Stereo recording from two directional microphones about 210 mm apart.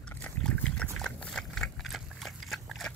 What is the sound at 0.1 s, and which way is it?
Pig, 5° left (ahead or behind).